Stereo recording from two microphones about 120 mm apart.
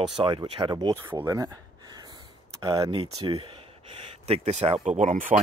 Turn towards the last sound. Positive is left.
turn(degrees=-90)